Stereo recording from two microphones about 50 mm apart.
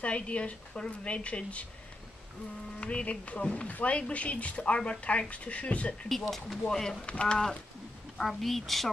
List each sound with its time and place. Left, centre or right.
0.0 s a woman's voice: left
2.8 s a woman's voice: left
6.7 s speech: centre
8.2 s a woman's voice: centre